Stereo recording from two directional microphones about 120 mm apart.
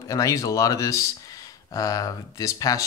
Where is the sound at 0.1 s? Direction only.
30° left (ahead or behind).